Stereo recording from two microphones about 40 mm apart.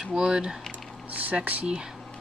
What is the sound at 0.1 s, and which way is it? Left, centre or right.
Speech, centre.